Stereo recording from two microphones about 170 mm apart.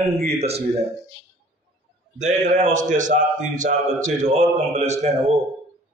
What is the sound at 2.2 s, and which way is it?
A man's voice, 45° right (ahead or behind).